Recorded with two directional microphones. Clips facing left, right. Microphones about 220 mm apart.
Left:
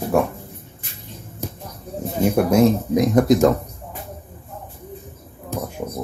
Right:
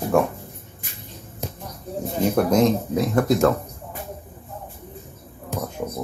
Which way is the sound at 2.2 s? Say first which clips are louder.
Left 3 dB; 10° left (ahead or behind).